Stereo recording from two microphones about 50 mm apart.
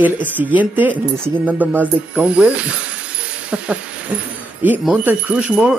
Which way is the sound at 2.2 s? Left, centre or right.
Right.